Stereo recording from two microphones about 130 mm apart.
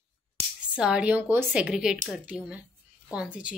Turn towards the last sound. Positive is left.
turn(degrees=-10)  # may be behind; listen again after turning